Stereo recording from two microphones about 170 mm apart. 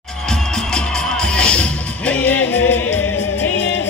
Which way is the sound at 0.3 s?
5° left (ahead or behind).